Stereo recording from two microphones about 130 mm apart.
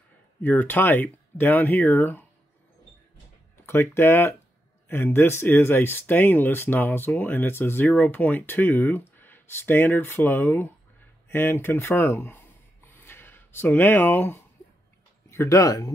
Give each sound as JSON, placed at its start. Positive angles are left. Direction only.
{"t": 0.4, "sound": "speech", "side_deg": 15}
{"t": 3.5, "sound": "speech", "side_deg": 15}